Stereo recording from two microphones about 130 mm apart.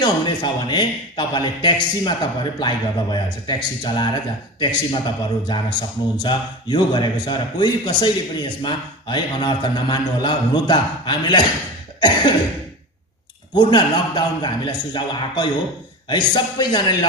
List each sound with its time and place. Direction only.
0.0 s speech: 35° left (ahead or behind)
13.6 s speech: 35° left (ahead or behind)